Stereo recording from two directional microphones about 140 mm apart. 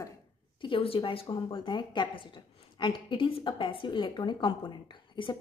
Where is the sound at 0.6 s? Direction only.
35° left (ahead or behind).